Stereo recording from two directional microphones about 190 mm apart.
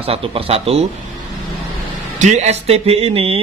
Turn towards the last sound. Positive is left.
turn(degrees=-30)  # may be behind; listen again after turning